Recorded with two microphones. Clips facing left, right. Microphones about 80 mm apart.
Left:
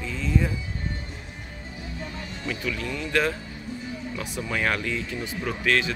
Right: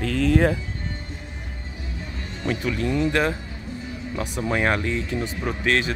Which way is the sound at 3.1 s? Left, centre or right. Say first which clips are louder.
Right 2 dB; right.